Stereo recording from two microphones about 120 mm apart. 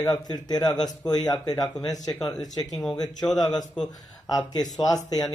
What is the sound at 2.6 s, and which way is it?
Speech, centre (ahead or behind).